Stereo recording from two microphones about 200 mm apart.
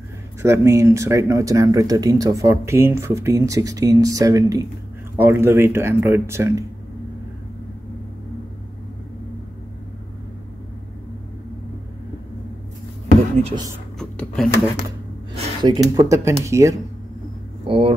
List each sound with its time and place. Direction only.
0.4 s speech: 15° right (ahead or behind)
13.9 s a sound: 5° left (ahead or behind)
15.3 s speech: 20° right (ahead or behind)
17.6 s speech: 25° right (ahead or behind)